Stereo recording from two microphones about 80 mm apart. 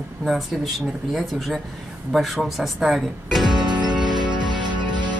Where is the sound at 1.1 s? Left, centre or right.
Centre.